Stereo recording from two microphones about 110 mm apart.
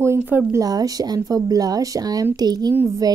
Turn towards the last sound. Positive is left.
turn(degrees=-25)  # may be behind; listen again after turning